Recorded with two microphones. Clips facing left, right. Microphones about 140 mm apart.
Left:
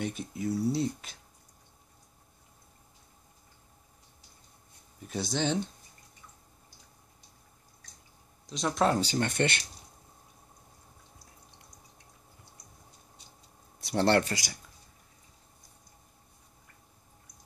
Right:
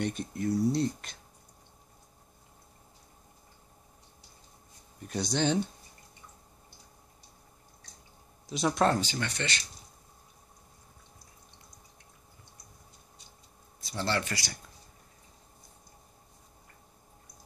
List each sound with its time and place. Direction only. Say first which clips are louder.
0.0 s speech: right 2 dB; 5° left (ahead or behind)
5.0 s speech: right 2 dB; centre (ahead or behind)
8.5 s speech: right 2 dB; 5° right (ahead or behind)
9.0 s speech: left 6 dB; 45° left (ahead or behind)
13.7 s speech: left 7 dB; 70° left (ahead or behind)
14.3 s speech: left 2 dB; 15° left (ahead or behind)